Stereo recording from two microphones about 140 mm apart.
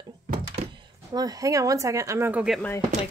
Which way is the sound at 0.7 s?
30° right (ahead or behind).